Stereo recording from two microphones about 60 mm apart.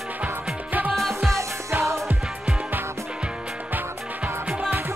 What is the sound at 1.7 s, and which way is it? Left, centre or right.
Music, right.